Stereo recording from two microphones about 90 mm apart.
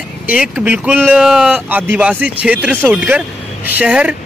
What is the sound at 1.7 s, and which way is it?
Speech, 20° right (ahead or behind).